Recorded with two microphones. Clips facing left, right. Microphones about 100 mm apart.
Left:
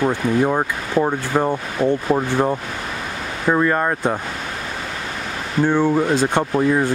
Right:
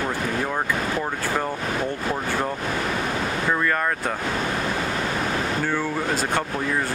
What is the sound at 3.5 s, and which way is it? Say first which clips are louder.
Speech: left 8 dB; 25° left (ahead or behind).